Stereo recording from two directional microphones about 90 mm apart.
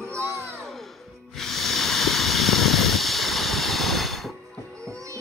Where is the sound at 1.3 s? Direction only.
5° left (ahead or behind).